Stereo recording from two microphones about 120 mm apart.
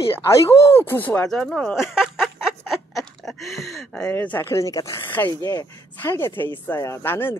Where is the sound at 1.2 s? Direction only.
5° left (ahead or behind).